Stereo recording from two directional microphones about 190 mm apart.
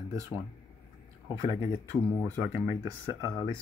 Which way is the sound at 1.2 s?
15° right (ahead or behind).